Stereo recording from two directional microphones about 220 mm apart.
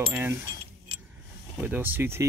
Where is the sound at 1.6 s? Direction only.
10° right (ahead or behind).